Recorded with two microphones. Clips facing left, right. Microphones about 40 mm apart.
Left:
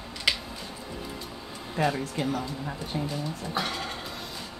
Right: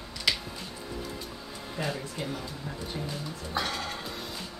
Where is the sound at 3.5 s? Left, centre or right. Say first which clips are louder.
Right 1 dB; centre.